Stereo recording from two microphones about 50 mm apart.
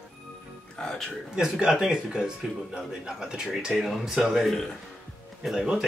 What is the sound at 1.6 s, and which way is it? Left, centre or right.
A man's voice, centre.